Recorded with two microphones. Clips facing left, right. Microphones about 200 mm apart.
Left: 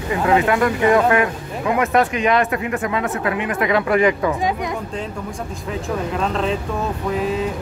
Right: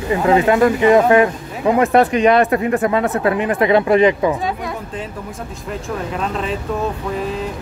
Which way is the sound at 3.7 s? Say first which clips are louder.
Right 3 dB; 25° right (ahead or behind).